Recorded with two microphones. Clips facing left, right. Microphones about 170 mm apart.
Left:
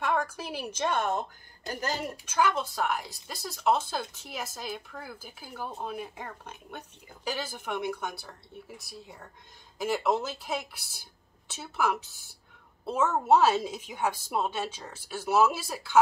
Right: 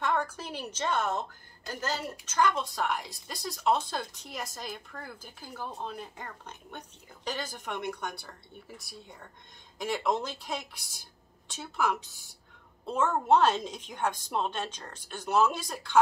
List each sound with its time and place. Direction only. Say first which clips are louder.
0.0 s a woman's voice: left 1 dB; 10° left (ahead or behind)